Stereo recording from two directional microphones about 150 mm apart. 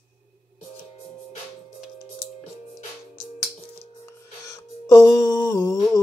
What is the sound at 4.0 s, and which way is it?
Music, 20° left (ahead or behind).